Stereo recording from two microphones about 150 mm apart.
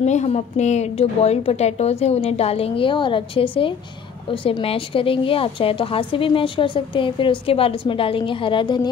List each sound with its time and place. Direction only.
0.0 s a woman's voice: 50° left (ahead or behind); by 8.8 s 30° left (ahead or behind)